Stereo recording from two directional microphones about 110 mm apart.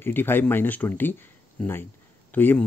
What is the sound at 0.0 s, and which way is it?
Speech, 20° left (ahead or behind).